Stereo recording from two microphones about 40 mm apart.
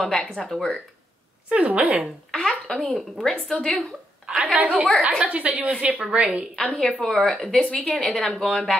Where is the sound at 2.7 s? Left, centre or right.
Centre.